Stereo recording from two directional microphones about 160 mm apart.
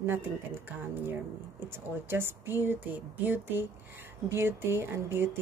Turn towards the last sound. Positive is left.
turn(degrees=-15)  # may be behind; listen again after turning